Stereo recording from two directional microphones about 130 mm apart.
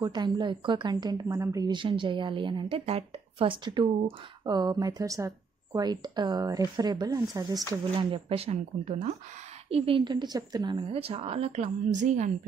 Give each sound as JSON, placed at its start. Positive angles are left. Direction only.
{"t": 0.0, "sound": "speech", "side_deg": -35}
{"t": 9.7, "sound": "speech", "side_deg": -50}
{"t": 10.9, "sound": "a woman's voice", "side_deg": -45}